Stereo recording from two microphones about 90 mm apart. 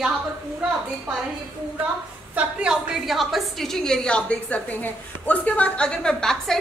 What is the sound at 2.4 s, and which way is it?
Speech, 15° right (ahead or behind).